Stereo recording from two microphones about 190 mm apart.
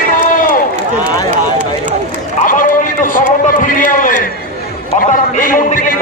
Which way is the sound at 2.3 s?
45° left (ahead or behind).